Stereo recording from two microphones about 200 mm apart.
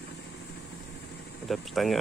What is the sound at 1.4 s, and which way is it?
Air conditioning, centre (ahead or behind).